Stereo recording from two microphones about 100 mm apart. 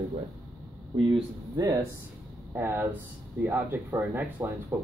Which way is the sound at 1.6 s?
40° right (ahead or behind).